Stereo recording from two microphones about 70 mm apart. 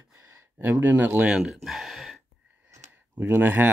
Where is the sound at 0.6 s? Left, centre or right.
Right.